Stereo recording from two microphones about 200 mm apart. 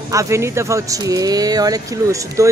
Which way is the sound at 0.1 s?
15° right (ahead or behind).